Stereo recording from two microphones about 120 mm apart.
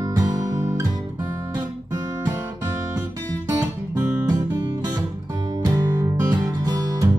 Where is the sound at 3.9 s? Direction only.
30° right (ahead or behind).